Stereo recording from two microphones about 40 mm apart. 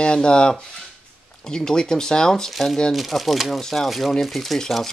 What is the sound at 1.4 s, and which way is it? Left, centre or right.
Speech, centre.